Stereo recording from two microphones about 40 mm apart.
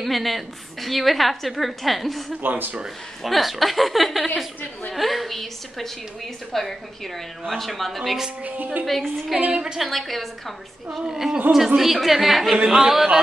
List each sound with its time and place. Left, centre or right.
0.0 s a woman's voice: centre
2.4 s speech: right
3.3 s a woman's voice: centre
9.5 s a woman's voice: right
9.8 s a woman's voice: centre
11.1 s a woman's voice: centre